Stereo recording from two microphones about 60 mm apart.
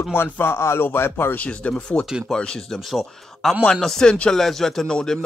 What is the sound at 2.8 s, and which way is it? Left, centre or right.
A man's voice, centre.